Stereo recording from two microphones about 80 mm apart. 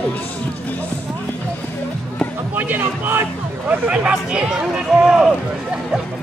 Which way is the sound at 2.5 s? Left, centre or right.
Right.